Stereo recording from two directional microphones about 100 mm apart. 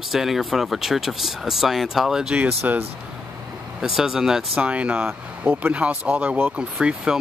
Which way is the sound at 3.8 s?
5° right (ahead or behind).